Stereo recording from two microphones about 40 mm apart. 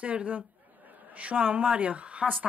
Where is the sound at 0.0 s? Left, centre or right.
Right.